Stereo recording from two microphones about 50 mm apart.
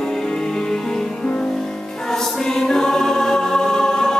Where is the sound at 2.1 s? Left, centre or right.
Centre.